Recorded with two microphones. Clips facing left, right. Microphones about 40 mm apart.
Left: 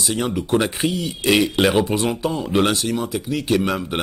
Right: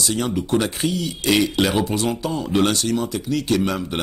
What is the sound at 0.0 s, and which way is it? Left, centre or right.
Speech, centre.